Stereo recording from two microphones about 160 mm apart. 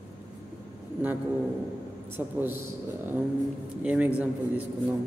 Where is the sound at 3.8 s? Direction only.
10° right (ahead or behind).